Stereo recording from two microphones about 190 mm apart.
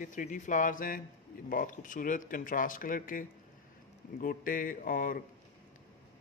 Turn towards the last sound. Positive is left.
turn(degrees=45)  # may be behind; listen again after turning